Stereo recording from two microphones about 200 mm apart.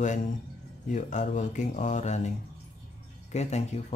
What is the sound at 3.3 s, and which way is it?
Speech, 35° left (ahead or behind).